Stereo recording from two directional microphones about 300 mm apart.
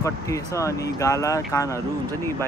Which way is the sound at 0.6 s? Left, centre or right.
Centre.